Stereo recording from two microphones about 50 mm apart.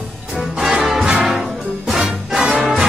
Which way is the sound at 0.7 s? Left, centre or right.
Centre.